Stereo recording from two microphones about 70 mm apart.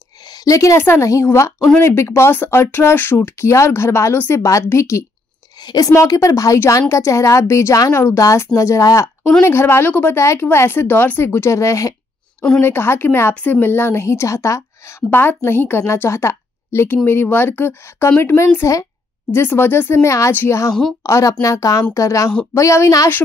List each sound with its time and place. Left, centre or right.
0.5 s a woman's voice: left
5.6 s a woman's voice: left
5.9 s a woman's voice: left
9.4 s a woman's voice: left
12.5 s a woman's voice: left
13.3 s a woman's voice: left
15.0 s a woman's voice: left
15.8 s a woman's voice: left
16.8 s a woman's voice: left
18.6 s a woman's voice: left
19.3 s a woman's voice: left